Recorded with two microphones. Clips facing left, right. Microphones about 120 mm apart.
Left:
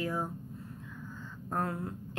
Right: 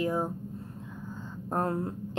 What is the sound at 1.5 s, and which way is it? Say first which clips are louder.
Speech: right 5 dB; 30° right (ahead or behind).